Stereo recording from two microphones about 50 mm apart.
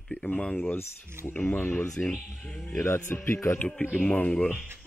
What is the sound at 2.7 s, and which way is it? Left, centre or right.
Speech, left.